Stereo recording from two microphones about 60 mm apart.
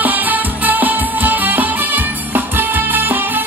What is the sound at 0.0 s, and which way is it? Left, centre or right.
Music, right.